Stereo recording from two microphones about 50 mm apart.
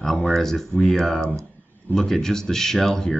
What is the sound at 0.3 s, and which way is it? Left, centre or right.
Speech, centre.